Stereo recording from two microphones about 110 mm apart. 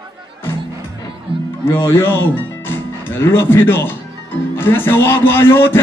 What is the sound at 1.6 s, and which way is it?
Speech, 25° left (ahead or behind).